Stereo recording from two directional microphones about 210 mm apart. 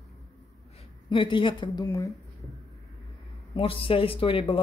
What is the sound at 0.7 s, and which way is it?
A woman's voice, 25° left (ahead or behind).